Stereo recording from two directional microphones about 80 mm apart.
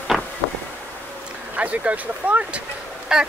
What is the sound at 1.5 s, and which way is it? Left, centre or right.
Speech, centre.